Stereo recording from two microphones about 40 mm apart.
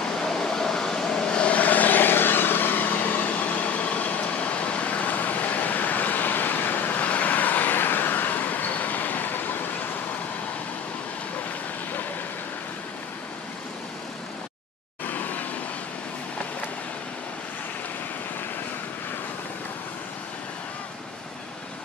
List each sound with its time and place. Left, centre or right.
0.0 s vehicle: centre; by 7.1 s left
7.1 s vehicle: left
15.0 s vehicle: left